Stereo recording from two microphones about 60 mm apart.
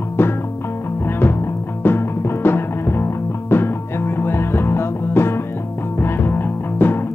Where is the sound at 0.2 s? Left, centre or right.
Left.